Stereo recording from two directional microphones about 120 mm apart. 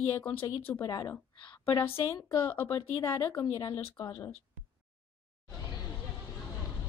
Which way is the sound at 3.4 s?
35° left (ahead or behind).